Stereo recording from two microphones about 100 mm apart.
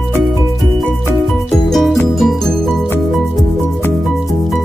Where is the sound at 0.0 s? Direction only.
Centre (ahead or behind).